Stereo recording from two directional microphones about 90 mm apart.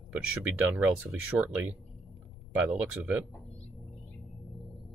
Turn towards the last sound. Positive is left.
turn(degrees=-15)  # may be behind; listen again after turning